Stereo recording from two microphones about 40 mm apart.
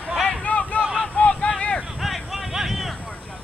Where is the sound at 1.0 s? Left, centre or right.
Left.